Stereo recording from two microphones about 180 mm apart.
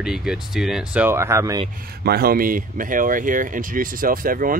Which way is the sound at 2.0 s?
60° right (ahead or behind).